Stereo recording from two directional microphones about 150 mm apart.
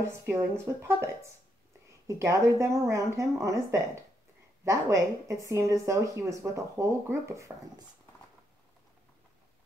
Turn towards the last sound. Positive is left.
turn(degrees=-20)  # may be behind; listen again after turning